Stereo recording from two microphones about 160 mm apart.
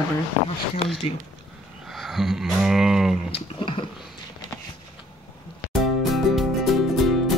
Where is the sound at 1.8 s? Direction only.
Centre (ahead or behind).